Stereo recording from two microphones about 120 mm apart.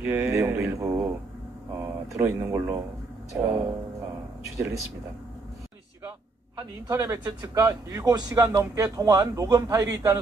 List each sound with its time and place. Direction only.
0.0 s speech: 15° right (ahead or behind)
2.1 s a man's voice: 20° right (ahead or behind)
6.9 s a man's voice: 20° right (ahead or behind)